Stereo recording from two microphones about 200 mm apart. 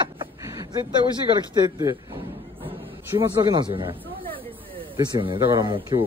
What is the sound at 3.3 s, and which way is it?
Speech, 20° right (ahead or behind).